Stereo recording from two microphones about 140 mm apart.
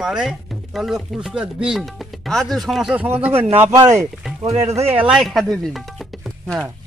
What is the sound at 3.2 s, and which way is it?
Speech, 15° right (ahead or behind).